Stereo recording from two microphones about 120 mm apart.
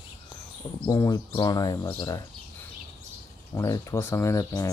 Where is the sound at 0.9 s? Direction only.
30° left (ahead or behind).